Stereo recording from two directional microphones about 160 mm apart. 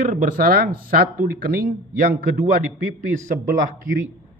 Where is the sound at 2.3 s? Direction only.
55° right (ahead or behind).